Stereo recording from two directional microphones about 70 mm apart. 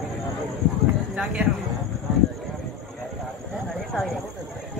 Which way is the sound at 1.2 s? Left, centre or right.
Centre.